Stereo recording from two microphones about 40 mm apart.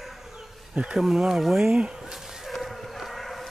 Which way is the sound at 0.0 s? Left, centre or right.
Centre.